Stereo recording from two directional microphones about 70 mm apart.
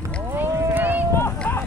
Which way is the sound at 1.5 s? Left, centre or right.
Left.